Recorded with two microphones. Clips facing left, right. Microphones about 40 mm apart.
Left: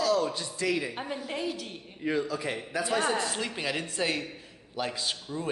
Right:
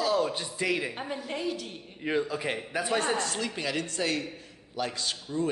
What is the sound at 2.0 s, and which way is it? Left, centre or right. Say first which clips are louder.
Speech: even; centre.